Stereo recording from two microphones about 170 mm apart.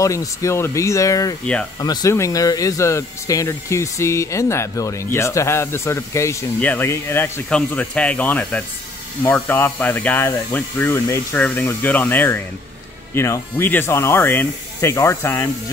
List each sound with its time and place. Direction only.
0.0 s speech: 20° left (ahead or behind)
1.4 s speech: 5° left (ahead or behind)
1.8 s speech: 25° left (ahead or behind)